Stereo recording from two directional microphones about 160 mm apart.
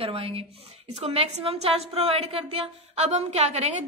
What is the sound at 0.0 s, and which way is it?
A woman's voice, 35° right (ahead or behind).